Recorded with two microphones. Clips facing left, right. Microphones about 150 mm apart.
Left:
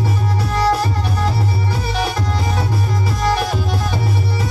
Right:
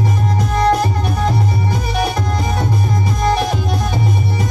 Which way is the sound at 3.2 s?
20° right (ahead or behind).